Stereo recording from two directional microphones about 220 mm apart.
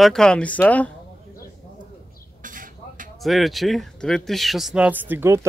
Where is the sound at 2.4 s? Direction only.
35° right (ahead or behind).